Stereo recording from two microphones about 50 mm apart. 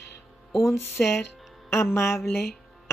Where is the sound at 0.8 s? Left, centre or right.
Left.